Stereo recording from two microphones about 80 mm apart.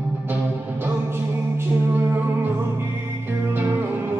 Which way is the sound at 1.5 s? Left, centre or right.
Right.